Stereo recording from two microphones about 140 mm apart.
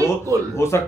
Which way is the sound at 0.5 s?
20° left (ahead or behind).